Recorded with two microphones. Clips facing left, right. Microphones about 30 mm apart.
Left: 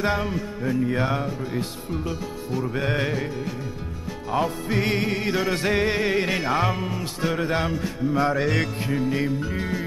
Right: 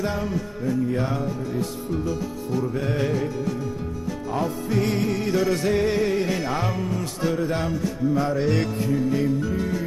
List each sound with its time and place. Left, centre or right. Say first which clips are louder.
0.0 s music: left 2 dB; left
6.4 s speech: left 2 dB; left
7.3 s music: left 3 dB; left
7.8 s speech: even; left
8.4 s music: right 1 dB; centre
8.8 s music: right 2 dB; left